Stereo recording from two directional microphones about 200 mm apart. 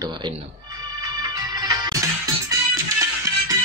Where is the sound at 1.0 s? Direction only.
20° right (ahead or behind).